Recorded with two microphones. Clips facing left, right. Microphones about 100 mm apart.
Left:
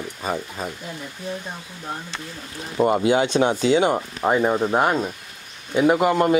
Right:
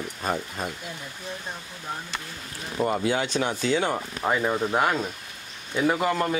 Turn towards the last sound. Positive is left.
turn(degrees=20)  # may be behind; listen again after turning